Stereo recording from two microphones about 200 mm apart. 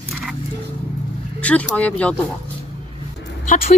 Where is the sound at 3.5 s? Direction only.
45° left (ahead or behind).